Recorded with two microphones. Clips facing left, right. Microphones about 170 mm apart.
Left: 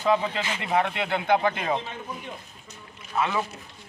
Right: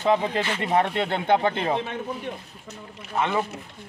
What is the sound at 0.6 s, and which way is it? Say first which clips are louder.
Speech: right 2 dB; 40° right (ahead or behind).